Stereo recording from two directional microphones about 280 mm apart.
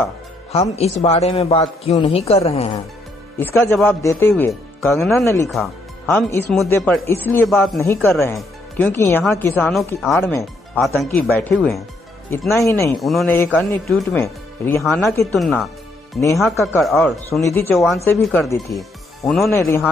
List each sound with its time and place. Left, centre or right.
0.5 s a man's voice: left
3.6 s speech: centre
12.6 s speech: centre
12.9 s speech: centre